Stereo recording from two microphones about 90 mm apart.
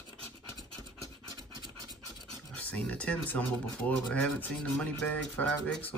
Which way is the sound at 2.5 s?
15° left (ahead or behind).